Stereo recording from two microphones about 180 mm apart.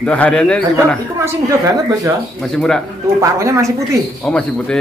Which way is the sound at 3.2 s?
15° right (ahead or behind).